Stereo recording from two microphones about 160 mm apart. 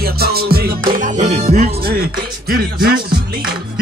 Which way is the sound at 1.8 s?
70° right (ahead or behind).